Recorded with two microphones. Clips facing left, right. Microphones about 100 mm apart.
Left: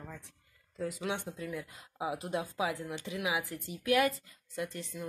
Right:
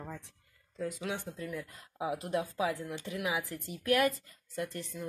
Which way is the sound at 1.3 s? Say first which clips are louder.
Even; 10° left (ahead or behind).